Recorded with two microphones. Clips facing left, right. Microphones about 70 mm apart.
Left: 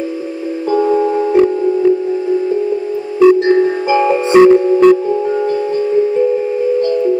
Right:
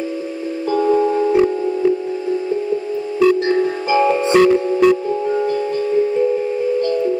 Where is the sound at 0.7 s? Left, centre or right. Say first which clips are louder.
Left 2 dB; centre.